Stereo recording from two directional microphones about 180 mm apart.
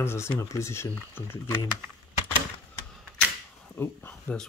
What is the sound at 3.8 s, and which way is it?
Speech, 10° left (ahead or behind).